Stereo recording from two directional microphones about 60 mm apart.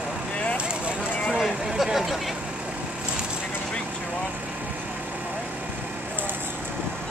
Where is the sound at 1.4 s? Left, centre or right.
Centre.